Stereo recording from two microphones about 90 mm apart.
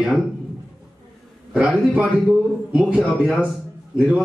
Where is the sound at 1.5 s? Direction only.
15° right (ahead or behind).